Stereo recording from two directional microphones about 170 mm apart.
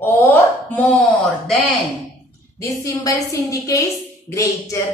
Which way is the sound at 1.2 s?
Centre (ahead or behind).